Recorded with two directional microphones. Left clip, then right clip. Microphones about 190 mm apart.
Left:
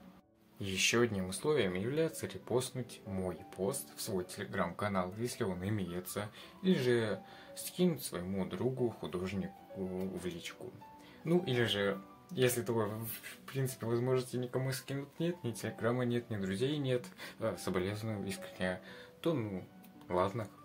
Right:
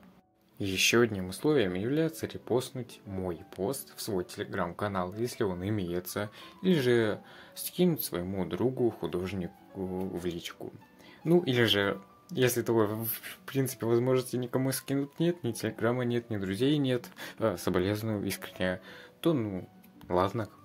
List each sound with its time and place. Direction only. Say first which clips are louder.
0.6 s speech: right 6 dB; 30° right (ahead or behind)
11.6 s speech: right 7 dB; 50° right (ahead or behind); by 20.4 s 30° right (ahead or behind)